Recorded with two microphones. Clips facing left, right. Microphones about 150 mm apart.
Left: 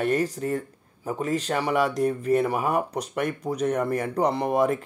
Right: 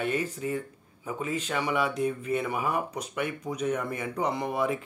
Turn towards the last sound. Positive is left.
turn(degrees=45)  # may be behind; listen again after turning